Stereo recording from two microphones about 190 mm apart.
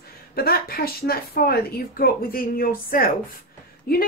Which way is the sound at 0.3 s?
50° left (ahead or behind).